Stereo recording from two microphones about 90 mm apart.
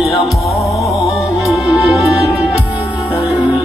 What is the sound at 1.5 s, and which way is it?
Music, centre (ahead or behind).